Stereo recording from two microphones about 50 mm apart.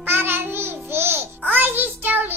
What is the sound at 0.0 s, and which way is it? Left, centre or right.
Child singing, right.